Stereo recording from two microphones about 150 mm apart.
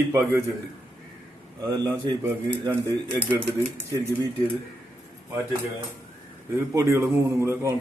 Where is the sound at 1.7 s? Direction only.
25° right (ahead or behind).